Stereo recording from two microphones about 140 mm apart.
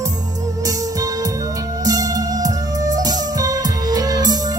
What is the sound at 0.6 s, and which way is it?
Music, 25° right (ahead or behind).